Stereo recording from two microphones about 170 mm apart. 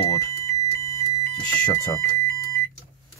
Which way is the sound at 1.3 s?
20° left (ahead or behind).